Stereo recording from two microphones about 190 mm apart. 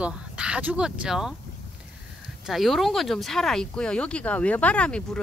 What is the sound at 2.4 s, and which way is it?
Speech, centre (ahead or behind).